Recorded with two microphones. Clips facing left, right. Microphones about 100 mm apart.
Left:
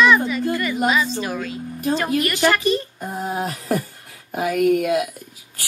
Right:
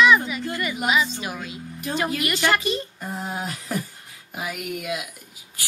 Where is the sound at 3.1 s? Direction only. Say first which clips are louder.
Left 6 dB; 20° left (ahead or behind).